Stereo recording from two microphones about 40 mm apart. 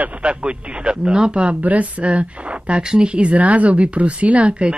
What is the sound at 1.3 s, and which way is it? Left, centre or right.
Speech, right.